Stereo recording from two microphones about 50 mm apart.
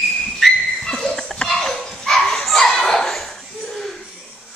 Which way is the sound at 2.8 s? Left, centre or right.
Centre.